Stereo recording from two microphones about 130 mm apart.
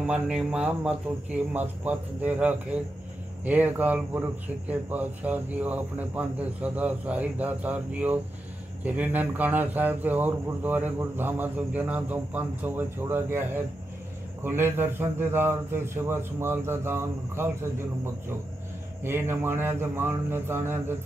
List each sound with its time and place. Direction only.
0.0 s a man's voice: 10° right (ahead or behind)